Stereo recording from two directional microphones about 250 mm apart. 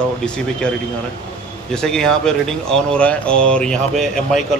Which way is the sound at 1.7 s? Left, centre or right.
Centre.